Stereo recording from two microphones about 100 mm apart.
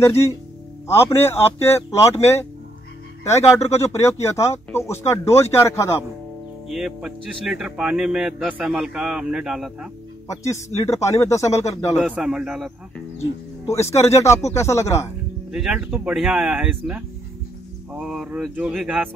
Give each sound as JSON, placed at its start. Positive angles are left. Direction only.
{"t": 0.0, "sound": "speech", "side_deg": 25}
{"t": 3.3, "sound": "speech", "side_deg": 25}
{"t": 6.7, "sound": "speech", "side_deg": -5}
{"t": 8.5, "sound": "speech", "side_deg": -15}
{"t": 8.7, "sound": "a man's voice", "side_deg": -5}
{"t": 10.5, "sound": "speech", "side_deg": 30}
{"t": 11.9, "sound": "speech", "side_deg": -10}
{"t": 13.7, "sound": "speech", "side_deg": 30}
{"t": 15.5, "sound": "speech", "side_deg": -5}